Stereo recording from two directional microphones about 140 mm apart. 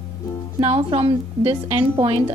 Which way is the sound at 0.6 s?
40° right (ahead or behind).